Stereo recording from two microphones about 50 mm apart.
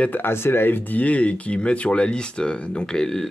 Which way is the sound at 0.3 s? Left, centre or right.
Left.